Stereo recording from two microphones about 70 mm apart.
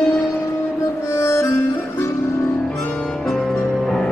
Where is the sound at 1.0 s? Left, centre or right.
Left.